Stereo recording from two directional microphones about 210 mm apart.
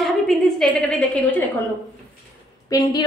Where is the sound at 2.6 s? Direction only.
15° left (ahead or behind).